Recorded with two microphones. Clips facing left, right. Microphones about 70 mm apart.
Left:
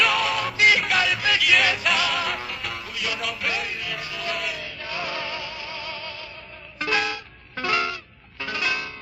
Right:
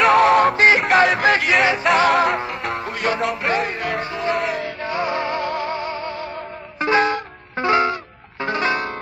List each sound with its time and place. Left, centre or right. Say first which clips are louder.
0.0 s music: right 10 dB; right
0.6 s music: right 6 dB; right
2.0 s music: right 10 dB; right
4.0 s music: right 8 dB; right